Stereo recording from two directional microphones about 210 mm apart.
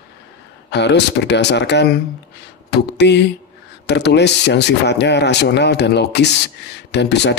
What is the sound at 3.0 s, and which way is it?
Speech, 55° left (ahead or behind).